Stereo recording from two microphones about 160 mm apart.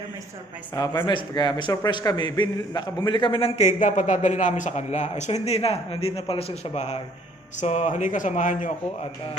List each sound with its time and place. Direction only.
0.7 s a man's voice: 25° left (ahead or behind); by 8.7 s 55° left (ahead or behind)